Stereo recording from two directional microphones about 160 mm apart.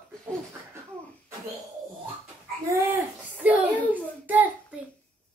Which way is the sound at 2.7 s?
10° right (ahead or behind).